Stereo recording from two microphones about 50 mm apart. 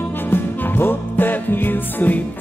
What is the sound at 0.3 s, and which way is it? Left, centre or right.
Music, left.